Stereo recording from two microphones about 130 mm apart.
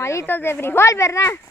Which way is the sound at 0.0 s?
20° left (ahead or behind).